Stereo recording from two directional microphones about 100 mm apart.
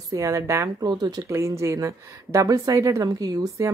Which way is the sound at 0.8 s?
40° right (ahead or behind).